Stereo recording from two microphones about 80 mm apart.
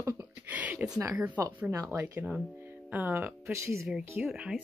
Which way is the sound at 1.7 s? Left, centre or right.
Right.